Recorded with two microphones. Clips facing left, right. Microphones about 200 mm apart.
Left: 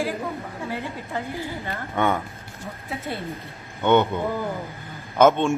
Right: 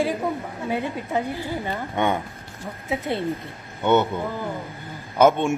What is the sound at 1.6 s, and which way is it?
Speech, 20° right (ahead or behind).